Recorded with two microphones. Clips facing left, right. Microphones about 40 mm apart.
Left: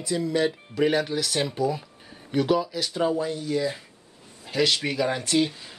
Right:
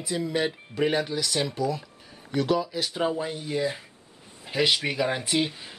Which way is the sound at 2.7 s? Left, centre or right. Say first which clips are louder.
Left 2 dB; centre.